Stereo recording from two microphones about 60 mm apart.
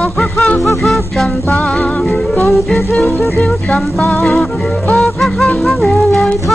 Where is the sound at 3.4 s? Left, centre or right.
Centre.